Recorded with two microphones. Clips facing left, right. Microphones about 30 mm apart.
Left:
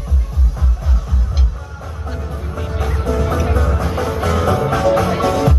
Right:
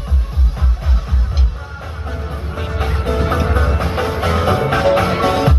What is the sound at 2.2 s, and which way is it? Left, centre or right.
Music, right.